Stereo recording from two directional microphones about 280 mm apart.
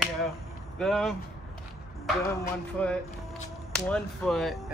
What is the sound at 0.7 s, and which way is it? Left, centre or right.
Speech, centre.